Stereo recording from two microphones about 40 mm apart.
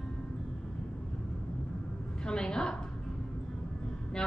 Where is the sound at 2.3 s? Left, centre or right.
Centre.